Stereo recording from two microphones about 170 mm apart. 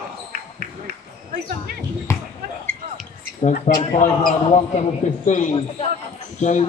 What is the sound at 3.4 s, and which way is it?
A man's voice, 55° left (ahead or behind).